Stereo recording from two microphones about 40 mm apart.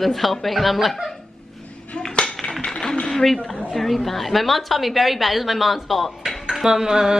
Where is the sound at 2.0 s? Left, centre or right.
Centre.